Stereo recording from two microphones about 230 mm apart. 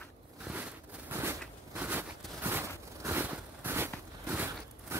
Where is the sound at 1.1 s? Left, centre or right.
Centre.